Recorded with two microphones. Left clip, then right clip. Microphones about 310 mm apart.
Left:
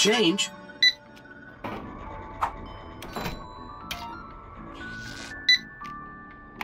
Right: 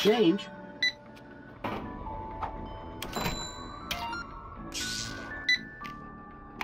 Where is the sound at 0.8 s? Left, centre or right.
Centre.